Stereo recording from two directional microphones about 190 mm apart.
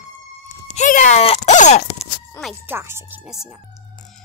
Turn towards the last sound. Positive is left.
turn(degrees=-5)  # may be behind; listen again after turning